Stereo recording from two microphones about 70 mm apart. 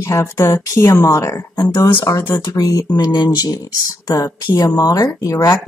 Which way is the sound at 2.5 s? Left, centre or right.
Left.